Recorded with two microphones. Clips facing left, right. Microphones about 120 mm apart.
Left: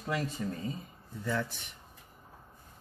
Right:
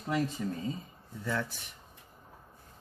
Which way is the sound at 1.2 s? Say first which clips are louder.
Left 1 dB; 5° left (ahead or behind).